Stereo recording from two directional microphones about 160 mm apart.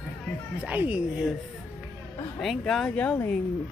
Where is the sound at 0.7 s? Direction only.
10° right (ahead or behind).